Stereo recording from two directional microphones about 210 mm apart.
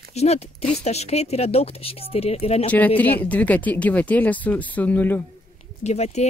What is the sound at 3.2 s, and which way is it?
Speech, 5° left (ahead or behind).